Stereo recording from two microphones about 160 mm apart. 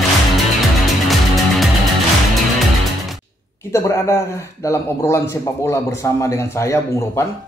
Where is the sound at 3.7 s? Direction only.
20° left (ahead or behind).